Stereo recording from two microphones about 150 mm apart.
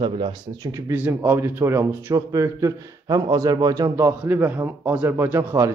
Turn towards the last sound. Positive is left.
turn(degrees=-20)  # may be behind; listen again after turning